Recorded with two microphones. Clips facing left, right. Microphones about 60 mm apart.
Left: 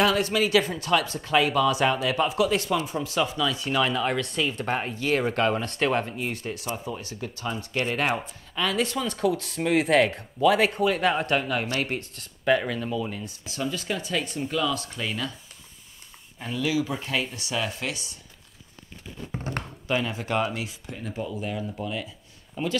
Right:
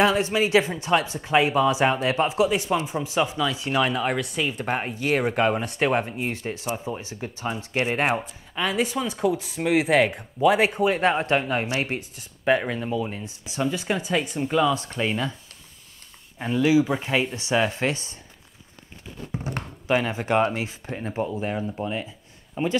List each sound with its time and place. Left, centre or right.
0.0 s speech: right
6.2 s speech: right
8.1 s speech: centre
8.5 s speech: centre; by 11.6 s right
11.6 s speech: centre
16.3 s speech: right
19.3 s speech: centre
19.9 s speech: right